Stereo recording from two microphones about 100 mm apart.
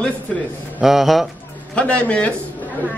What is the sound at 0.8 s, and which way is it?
Speech, 5° right (ahead or behind).